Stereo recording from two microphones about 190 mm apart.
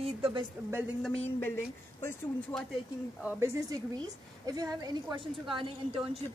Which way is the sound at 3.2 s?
15° right (ahead or behind).